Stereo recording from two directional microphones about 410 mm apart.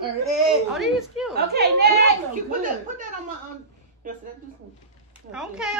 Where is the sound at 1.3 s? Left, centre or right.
Right.